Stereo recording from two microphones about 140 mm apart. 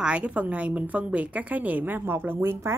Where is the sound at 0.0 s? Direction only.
10° right (ahead or behind).